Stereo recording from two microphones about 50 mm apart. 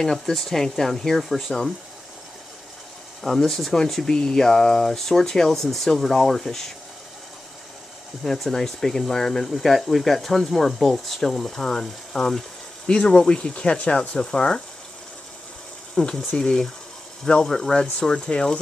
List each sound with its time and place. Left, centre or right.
0.0 s speech: centre
3.2 s speech: centre
8.2 s speech: centre
15.9 s speech: centre